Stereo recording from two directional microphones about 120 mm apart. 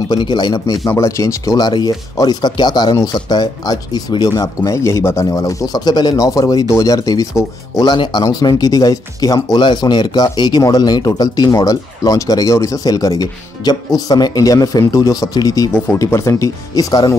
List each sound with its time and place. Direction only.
0.1 s speech: 35° left (ahead or behind)